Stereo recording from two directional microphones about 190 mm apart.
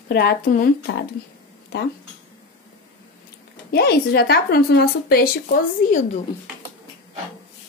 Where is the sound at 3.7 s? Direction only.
55° left (ahead or behind).